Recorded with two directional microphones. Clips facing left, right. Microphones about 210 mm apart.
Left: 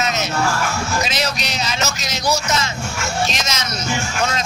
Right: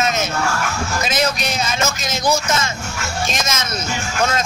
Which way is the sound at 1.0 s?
50° right (ahead or behind).